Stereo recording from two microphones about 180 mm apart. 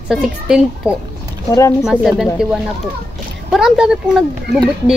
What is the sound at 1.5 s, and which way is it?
Speech, 15° left (ahead or behind).